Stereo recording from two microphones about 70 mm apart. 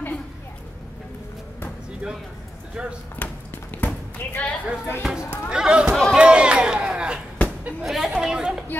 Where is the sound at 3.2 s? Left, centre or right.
Left.